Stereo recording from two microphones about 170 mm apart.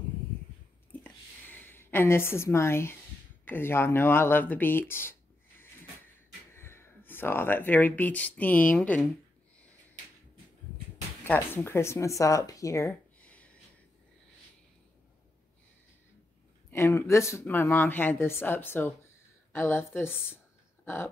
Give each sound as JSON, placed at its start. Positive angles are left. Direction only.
{"t": 1.0, "sound": "a sound", "side_deg": 10}
{"t": 3.4, "sound": "speech", "side_deg": 15}
{"t": 6.5, "sound": "speech", "side_deg": 15}
{"t": 11.2, "sound": "speech", "side_deg": 15}
{"t": 16.7, "sound": "speech", "side_deg": 15}
{"t": 20.8, "sound": "a sound", "side_deg": 15}